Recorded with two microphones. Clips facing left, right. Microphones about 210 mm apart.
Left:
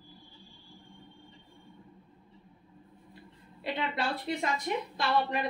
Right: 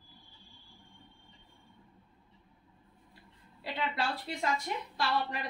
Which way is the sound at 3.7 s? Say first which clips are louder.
Left 5 dB; 20° left (ahead or behind).